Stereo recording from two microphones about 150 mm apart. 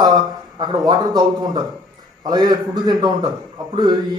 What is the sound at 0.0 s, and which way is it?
A man's voice, 30° right (ahead or behind).